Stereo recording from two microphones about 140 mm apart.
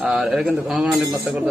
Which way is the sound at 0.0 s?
Centre (ahead or behind).